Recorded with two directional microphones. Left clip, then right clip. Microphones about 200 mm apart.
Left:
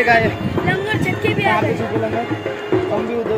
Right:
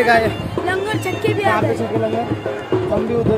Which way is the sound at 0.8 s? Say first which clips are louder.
Left 1 dB; 25° right (ahead or behind).